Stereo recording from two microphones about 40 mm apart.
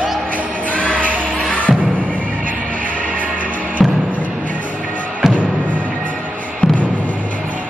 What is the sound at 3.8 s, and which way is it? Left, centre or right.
Music, centre.